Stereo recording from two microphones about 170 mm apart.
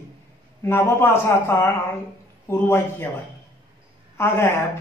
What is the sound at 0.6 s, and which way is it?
A man's voice, 15° left (ahead or behind).